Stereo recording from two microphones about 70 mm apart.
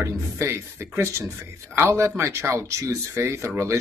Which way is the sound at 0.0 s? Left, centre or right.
Right.